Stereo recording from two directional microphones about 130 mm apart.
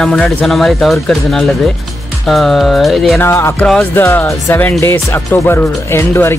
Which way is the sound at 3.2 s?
20° left (ahead or behind).